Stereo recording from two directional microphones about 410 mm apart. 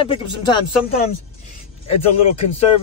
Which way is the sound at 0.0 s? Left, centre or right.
Centre.